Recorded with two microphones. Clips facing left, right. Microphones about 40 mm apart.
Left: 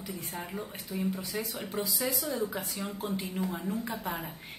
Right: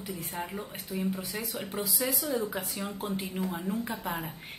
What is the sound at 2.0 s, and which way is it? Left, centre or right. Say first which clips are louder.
Speech: right 3 dB; centre.